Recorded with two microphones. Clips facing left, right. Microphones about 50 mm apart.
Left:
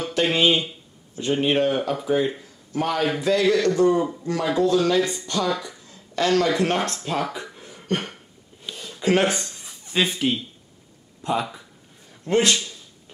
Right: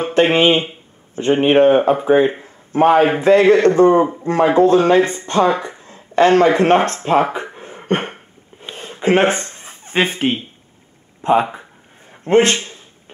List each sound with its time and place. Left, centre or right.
0.0 s a man's voice: right